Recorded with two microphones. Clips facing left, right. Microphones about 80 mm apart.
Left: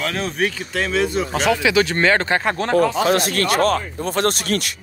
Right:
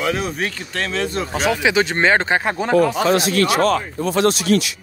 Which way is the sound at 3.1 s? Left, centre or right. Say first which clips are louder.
Right 2 dB; left.